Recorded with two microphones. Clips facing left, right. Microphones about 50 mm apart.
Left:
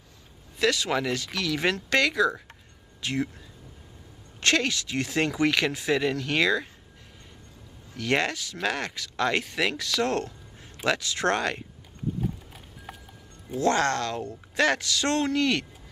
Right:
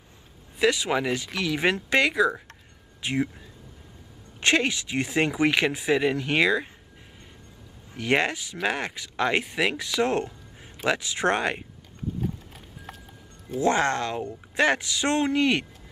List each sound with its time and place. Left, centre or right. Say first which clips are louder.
0.6 s speech: right 2 dB; centre
4.4 s speech: right 2 dB; centre
7.9 s speech: right 2 dB; right
12.2 s vehicle: even; centre
13.6 s speech: right 1 dB; centre